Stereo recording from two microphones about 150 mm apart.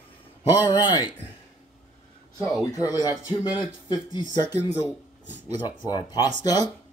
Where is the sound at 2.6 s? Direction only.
25° left (ahead or behind).